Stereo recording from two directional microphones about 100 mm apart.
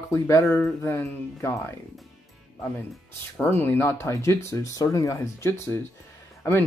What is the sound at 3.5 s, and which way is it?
Speech, 20° left (ahead or behind).